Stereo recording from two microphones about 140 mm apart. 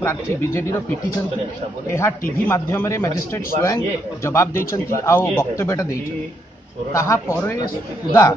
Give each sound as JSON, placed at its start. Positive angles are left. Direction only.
{"t": 0.0, "sound": "a man's voice", "side_deg": 20}
{"t": 1.9, "sound": "a man's voice", "side_deg": 20}
{"t": 6.9, "sound": "a man's voice", "side_deg": 20}